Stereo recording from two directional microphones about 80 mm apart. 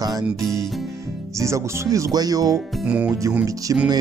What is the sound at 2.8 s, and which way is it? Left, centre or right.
Speech, centre.